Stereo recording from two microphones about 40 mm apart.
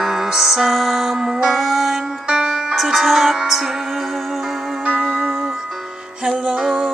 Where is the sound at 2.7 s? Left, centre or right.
Centre.